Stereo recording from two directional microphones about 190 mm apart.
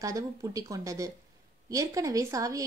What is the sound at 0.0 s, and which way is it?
A woman's voice, 20° right (ahead or behind).